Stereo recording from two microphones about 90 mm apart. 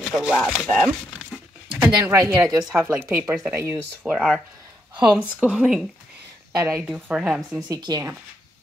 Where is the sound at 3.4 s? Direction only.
30° right (ahead or behind).